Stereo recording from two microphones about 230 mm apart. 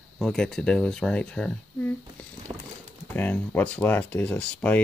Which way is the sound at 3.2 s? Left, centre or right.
Centre.